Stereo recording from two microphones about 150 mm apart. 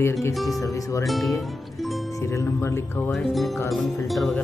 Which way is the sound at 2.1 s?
20° left (ahead or behind).